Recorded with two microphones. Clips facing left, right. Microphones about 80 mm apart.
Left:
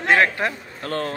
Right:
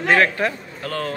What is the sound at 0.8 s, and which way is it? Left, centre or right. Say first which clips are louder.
Speech: even; left.